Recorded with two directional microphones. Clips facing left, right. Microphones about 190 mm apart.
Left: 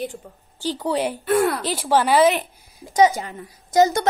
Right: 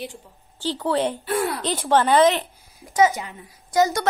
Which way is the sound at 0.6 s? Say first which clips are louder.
Even; 15° left (ahead or behind).